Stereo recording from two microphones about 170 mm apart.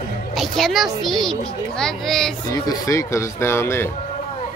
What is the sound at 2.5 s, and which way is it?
Speech, 20° left (ahead or behind).